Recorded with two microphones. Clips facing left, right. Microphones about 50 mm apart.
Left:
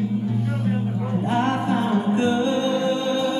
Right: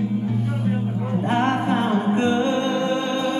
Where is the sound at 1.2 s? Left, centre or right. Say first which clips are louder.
Right 1 dB; right.